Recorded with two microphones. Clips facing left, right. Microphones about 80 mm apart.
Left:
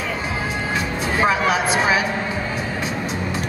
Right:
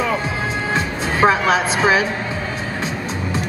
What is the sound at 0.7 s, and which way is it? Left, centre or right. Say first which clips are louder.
Music: right 2 dB; right.